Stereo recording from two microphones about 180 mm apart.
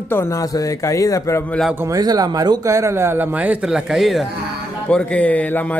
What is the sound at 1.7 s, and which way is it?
Speech, 20° right (ahead or behind).